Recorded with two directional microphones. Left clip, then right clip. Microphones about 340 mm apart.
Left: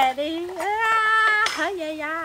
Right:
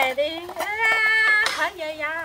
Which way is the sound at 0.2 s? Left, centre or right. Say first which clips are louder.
Right 1 dB; centre.